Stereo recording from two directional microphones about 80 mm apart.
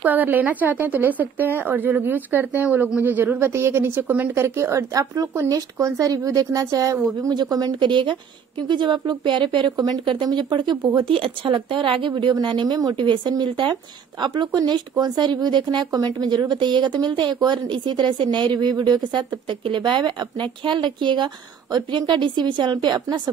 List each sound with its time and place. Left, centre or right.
0.0 s a woman's voice: right
4.6 s speech: right
7.8 s a woman's voice: right
11.0 s a woman's voice: right
12.9 s speech: right
13.3 s speech: right